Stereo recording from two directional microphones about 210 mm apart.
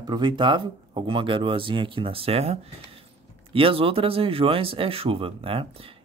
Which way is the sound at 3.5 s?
25° right (ahead or behind).